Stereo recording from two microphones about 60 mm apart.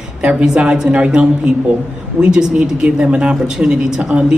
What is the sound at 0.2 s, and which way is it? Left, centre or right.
Speech, centre.